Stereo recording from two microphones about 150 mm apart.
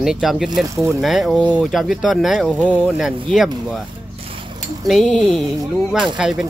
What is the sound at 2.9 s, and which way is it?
Speech, centre (ahead or behind).